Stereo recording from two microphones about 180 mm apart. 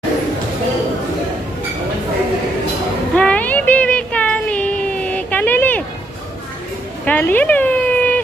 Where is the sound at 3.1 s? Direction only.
5° left (ahead or behind).